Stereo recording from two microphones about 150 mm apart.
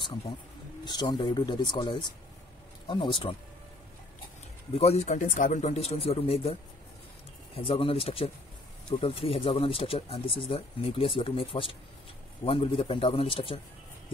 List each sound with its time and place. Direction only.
0.8 s speech: 30° left (ahead or behind)
4.7 s speech: 45° left (ahead or behind)
7.5 s speech: 40° left (ahead or behind)